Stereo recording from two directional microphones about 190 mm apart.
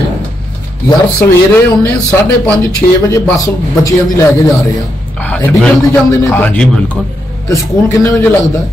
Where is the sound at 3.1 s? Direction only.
20° left (ahead or behind).